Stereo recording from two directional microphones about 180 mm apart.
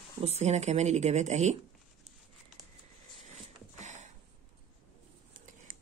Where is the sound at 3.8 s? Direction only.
40° right (ahead or behind).